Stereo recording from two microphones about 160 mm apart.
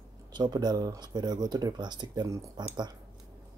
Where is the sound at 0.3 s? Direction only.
25° right (ahead or behind).